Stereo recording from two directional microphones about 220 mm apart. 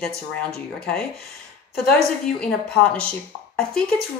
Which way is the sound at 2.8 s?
5° left (ahead or behind).